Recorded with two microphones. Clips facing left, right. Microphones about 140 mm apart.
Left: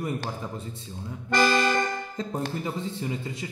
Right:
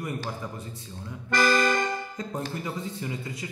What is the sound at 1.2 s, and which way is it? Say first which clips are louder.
Speech: left 1 dB; 20° left (ahead or behind).